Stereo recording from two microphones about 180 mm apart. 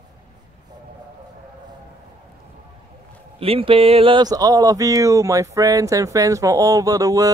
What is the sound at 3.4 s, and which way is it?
Speech, 30° right (ahead or behind).